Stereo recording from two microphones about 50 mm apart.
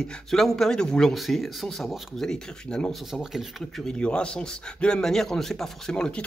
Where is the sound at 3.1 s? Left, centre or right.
Centre.